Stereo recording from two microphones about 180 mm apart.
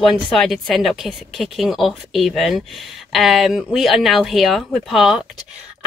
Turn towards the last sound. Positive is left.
turn(degrees=0)  # may be behind; listen again after turning